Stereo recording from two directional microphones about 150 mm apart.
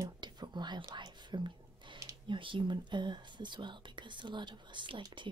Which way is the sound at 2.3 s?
35° right (ahead or behind).